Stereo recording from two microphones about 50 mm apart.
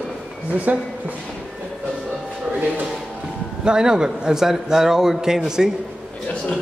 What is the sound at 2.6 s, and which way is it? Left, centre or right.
Speech, right.